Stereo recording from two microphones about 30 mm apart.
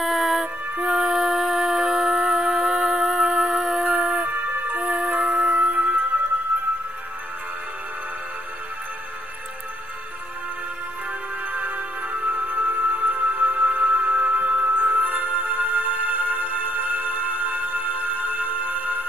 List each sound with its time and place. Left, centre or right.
0.0 s music: centre
3.8 s music: right
4.3 s music: right
4.9 s music: right
5.5 s music: right
11.1 s music: right